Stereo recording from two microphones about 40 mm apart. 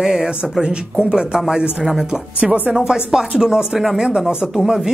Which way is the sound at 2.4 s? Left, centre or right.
Right.